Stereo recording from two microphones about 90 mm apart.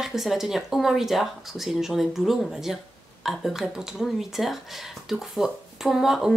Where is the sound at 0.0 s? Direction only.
5° right (ahead or behind).